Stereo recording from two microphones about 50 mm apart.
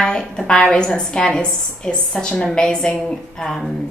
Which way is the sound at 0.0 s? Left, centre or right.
Centre.